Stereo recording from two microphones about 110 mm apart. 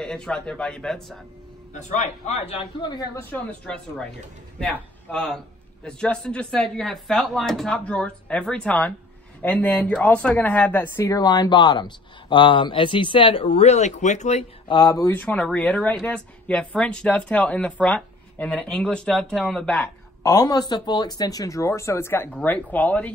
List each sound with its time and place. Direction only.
0.0 s speech: 5° left (ahead or behind)
1.7 s a man's voice: 90° left; by 2.7 s 65° left (ahead or behind)
2.8 s speech: 40° left (ahead or behind)
3.2 s speech: 15° left (ahead or behind)
5.1 s speech: 10° left (ahead or behind)
11.1 s speech: 35° left (ahead or behind); by 14.4 s 90° left
14.7 s speech: 35° left (ahead or behind)
15.1 s speech: 10° left (ahead or behind)
20.2 s speech: 35° left (ahead or behind); by 23.1 s 15° left (ahead or behind)